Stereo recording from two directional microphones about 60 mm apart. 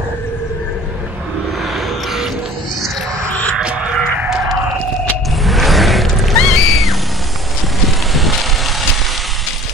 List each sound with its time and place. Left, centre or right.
3.5 s music: centre
5.4 s music: centre
8.1 s vehicle: centre